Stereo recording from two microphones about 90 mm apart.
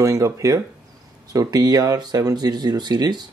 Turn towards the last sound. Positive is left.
turn(degrees=-50)  # may be behind; listen again after turning